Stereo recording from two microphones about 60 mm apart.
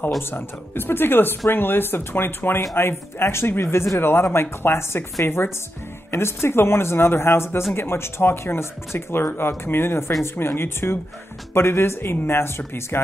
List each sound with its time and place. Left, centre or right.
0.2 s speech: left